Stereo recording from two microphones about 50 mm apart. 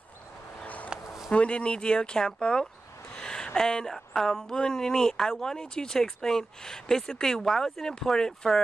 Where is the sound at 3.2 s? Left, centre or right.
Centre.